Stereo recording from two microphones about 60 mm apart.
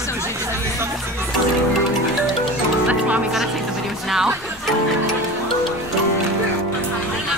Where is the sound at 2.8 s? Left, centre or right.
Right.